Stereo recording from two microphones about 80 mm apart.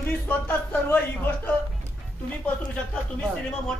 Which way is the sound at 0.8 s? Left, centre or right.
Left.